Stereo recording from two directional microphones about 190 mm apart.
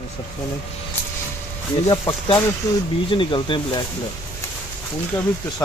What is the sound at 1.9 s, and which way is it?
Speech, 25° left (ahead or behind).